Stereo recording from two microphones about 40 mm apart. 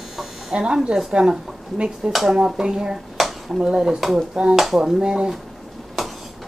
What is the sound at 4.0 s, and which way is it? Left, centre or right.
Speech, centre.